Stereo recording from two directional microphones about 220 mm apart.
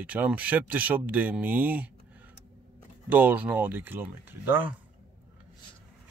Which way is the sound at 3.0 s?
5° right (ahead or behind).